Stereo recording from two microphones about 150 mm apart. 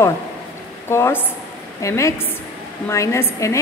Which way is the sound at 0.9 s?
15° left (ahead or behind).